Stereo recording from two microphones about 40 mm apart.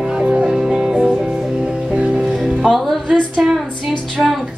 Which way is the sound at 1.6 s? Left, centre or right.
Right.